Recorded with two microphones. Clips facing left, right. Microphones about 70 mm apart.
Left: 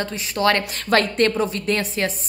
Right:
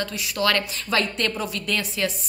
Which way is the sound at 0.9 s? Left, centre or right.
Left.